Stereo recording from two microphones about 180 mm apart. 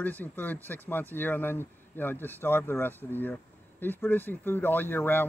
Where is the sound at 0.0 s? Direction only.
10° left (ahead or behind).